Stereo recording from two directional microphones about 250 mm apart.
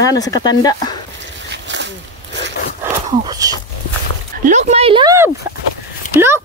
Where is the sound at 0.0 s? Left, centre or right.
Centre.